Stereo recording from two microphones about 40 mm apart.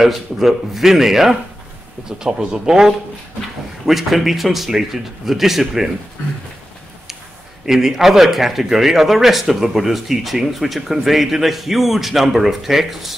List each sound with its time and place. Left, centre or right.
0.0 s speech: centre
3.8 s a man's voice: centre
7.6 s speech: centre